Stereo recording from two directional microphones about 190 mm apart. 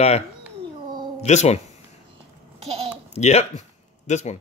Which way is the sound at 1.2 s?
35° left (ahead or behind).